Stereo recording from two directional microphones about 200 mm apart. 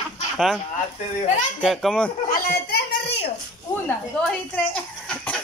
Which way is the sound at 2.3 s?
55° left (ahead or behind).